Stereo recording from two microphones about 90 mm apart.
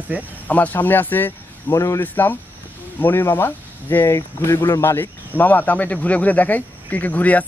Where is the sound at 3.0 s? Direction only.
25° left (ahead or behind).